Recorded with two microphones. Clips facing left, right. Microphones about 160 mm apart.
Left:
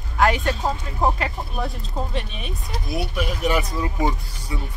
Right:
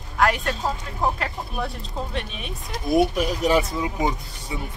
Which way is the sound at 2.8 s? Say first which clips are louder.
Right 7 dB; 50° right (ahead or behind).